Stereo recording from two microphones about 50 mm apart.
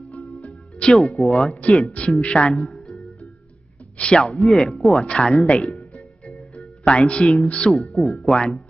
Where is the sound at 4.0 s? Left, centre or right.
Centre.